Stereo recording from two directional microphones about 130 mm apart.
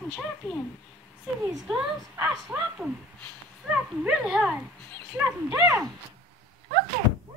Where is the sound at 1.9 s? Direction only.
15° right (ahead or behind).